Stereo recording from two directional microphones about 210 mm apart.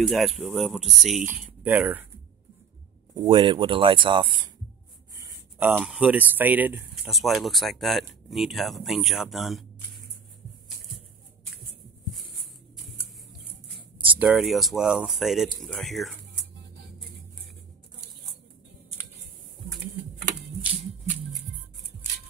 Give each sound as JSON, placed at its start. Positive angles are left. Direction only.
{"t": 0.0, "sound": "speech", "side_deg": 0}
{"t": 3.2, "sound": "speech", "side_deg": -25}
{"t": 5.2, "sound": "a sound", "side_deg": -10}
{"t": 5.8, "sound": "speech", "side_deg": -5}
{"t": 12.2, "sound": "music", "side_deg": 0}
{"t": 13.5, "sound": "a sound", "side_deg": -5}
{"t": 14.1, "sound": "speech", "side_deg": -5}